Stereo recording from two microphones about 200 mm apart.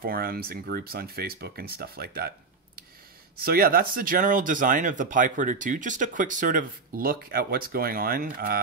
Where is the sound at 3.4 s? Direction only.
50° right (ahead or behind).